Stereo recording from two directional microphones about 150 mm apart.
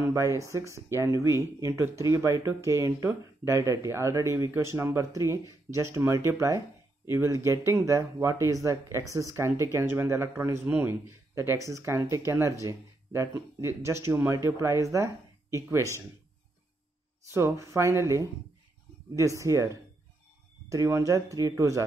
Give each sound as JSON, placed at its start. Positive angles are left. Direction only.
{"t": 0.0, "sound": "speech", "side_deg": -20}
{"t": 17.3, "sound": "speech", "side_deg": -20}